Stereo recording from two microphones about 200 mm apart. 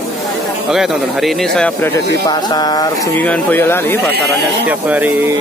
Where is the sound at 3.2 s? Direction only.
10° left (ahead or behind).